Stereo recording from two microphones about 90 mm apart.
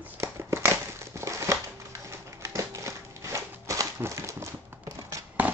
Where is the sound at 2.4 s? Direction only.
30° right (ahead or behind).